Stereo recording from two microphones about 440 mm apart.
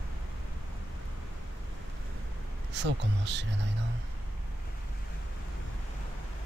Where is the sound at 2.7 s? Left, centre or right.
Right.